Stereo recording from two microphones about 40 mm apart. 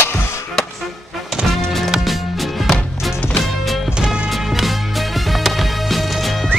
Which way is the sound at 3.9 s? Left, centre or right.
Right.